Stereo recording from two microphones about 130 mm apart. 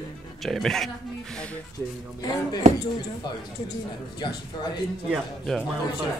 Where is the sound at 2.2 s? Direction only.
30° left (ahead or behind).